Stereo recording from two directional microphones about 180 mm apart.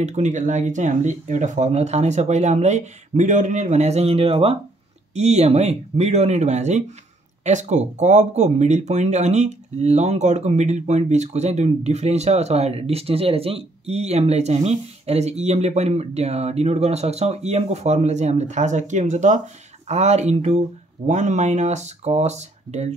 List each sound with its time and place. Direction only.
0.0 s speech: 40° right (ahead or behind)